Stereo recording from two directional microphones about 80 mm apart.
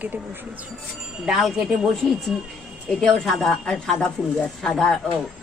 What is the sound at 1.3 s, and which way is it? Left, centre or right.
Speech, centre.